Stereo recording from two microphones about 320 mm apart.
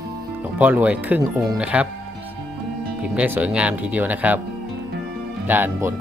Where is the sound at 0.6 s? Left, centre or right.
Centre.